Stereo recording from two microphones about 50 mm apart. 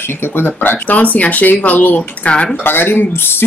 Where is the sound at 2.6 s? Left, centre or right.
Left.